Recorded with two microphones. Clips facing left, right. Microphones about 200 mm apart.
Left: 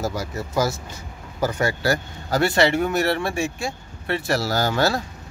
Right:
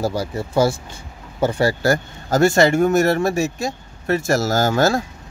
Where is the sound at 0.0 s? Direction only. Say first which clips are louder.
Right 4 dB; 30° right (ahead or behind).